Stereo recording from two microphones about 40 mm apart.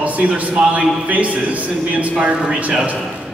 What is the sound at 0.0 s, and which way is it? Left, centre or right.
A man's voice, right.